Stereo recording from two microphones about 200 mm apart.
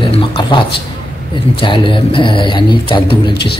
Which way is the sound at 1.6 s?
25° left (ahead or behind).